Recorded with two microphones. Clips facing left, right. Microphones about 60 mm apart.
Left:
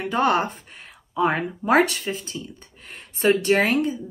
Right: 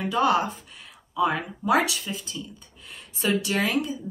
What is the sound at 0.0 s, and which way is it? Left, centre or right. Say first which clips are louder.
A woman's voice: left 1 dB; left.